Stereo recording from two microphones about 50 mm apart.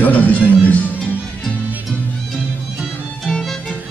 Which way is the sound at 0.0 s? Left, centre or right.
Left.